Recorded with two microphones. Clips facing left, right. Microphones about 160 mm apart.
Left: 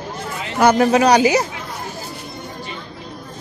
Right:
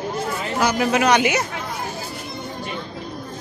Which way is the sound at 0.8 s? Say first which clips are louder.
Left 2 dB; 35° left (ahead or behind).